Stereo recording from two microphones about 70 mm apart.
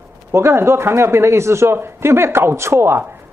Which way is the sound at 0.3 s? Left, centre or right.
Right.